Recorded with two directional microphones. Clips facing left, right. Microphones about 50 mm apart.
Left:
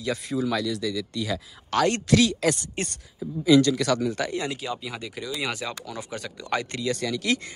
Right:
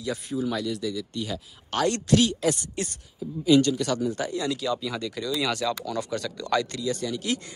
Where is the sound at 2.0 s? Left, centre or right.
Left.